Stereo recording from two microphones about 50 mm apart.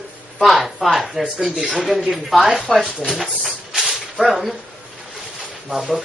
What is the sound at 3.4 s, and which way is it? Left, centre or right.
Spray, centre.